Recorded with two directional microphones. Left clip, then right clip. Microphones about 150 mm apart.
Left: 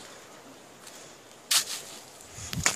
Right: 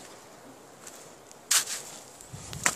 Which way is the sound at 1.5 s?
25° right (ahead or behind).